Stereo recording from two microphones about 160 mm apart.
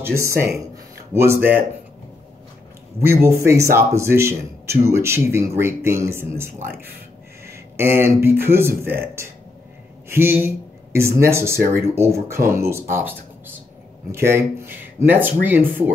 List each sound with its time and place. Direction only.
0.0 s speech: 15° right (ahead or behind)
3.0 s speech: 15° right (ahead or behind)
14.1 s speech: 15° right (ahead or behind)